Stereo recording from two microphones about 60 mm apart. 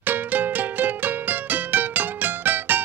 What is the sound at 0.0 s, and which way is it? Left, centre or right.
Music, right.